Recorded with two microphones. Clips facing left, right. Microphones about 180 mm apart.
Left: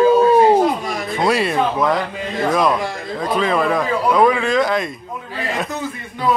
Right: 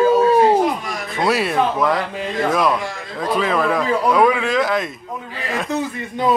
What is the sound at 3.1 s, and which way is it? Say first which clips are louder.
A man's voice: left 1 dB; centre (ahead or behind).